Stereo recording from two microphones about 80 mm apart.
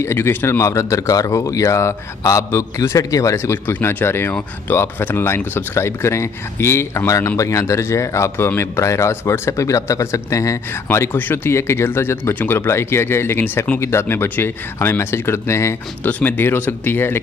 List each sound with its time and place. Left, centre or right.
0.0 s speech: left
16.0 s speech: centre